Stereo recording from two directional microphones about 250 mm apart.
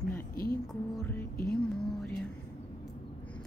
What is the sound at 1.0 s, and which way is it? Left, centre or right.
Speech, centre.